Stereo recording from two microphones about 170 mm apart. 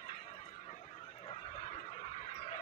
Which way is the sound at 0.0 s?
40° left (ahead or behind).